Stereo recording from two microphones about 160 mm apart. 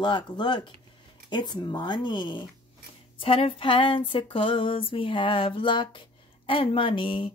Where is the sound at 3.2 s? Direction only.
35° left (ahead or behind).